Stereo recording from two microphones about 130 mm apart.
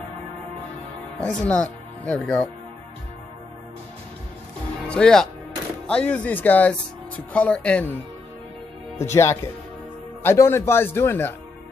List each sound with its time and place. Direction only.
1.2 s speech: 10° left (ahead or behind)
4.8 s speech: 5° left (ahead or behind)
8.9 s speech: 20° left (ahead or behind)